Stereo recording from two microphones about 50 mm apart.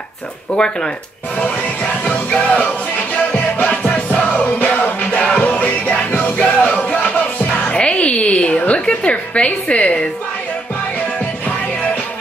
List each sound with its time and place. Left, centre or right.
0.6 s speech: centre
1.4 s music: left
11.1 s music: left